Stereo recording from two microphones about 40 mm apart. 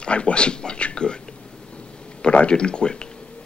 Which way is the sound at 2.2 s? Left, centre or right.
Left.